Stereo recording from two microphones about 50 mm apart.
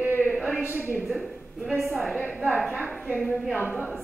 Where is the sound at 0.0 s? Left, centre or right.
Right.